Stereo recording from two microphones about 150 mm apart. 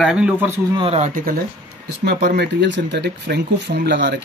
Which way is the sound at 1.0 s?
65° right (ahead or behind).